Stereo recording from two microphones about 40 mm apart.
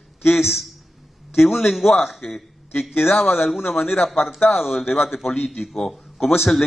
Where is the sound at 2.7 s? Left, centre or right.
Left.